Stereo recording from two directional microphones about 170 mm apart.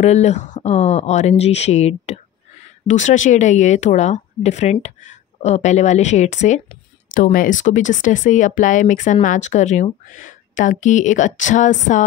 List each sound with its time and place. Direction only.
0.0 s speech: 40° left (ahead or behind)